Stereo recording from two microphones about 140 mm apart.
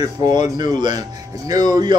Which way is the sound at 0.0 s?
30° right (ahead or behind).